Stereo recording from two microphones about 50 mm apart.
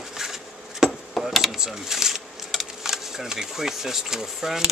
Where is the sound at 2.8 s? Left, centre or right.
Centre.